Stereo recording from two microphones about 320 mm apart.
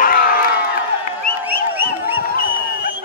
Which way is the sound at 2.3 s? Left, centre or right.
Left.